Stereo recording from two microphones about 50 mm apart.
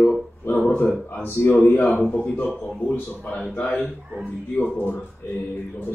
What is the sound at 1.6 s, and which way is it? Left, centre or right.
Speech, left.